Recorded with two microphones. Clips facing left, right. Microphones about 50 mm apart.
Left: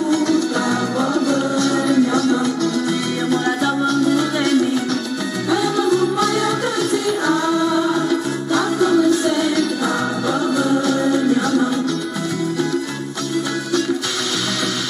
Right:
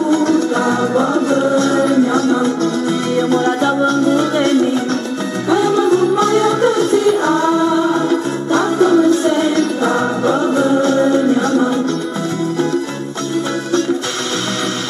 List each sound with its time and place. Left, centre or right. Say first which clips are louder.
0.1 s music: right 3 dB; right